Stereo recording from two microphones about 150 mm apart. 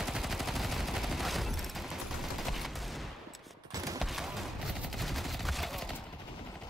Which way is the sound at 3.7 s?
25° right (ahead or behind).